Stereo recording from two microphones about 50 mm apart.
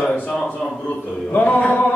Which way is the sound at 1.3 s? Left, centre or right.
Left.